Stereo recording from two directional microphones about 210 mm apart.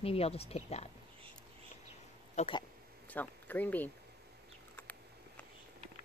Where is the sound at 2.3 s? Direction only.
25° left (ahead or behind).